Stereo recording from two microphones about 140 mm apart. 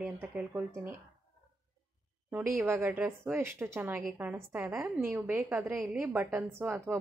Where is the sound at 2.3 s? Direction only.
15° right (ahead or behind).